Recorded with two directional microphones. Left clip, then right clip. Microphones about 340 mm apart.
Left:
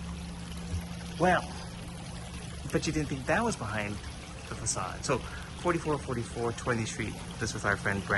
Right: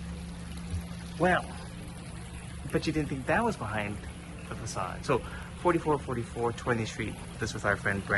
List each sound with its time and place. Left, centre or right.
2.7 s a man's voice: centre